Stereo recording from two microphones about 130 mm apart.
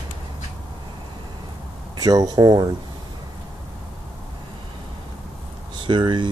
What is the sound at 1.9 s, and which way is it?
Speech, 30° right (ahead or behind).